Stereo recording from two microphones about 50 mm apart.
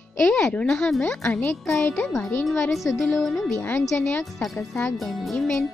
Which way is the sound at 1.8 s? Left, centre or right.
Left.